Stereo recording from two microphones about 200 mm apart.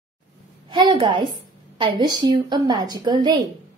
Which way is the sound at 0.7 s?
25° right (ahead or behind).